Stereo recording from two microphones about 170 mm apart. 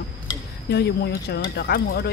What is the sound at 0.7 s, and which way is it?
Speech, 70° left (ahead or behind).